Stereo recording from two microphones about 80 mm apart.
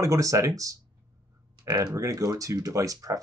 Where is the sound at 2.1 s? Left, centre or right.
Right.